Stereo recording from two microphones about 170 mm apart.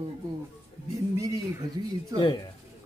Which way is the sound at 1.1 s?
20° right (ahead or behind).